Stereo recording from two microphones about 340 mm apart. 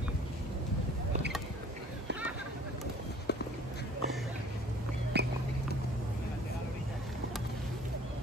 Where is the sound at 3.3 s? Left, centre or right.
Left.